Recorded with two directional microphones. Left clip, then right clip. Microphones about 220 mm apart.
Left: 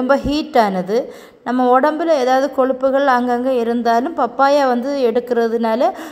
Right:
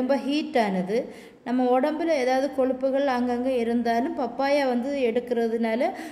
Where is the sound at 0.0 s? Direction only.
20° left (ahead or behind).